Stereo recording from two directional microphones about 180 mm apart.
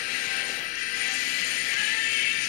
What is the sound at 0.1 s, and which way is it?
Music, 50° left (ahead or behind).